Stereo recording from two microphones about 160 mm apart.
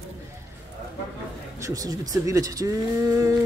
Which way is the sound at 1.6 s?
20° right (ahead or behind).